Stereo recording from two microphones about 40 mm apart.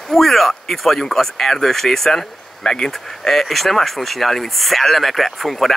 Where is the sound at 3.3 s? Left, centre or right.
Centre.